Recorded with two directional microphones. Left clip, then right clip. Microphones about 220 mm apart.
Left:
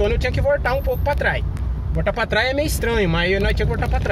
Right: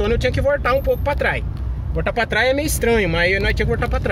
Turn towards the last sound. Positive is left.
turn(degrees=-25)  # may be behind; listen again after turning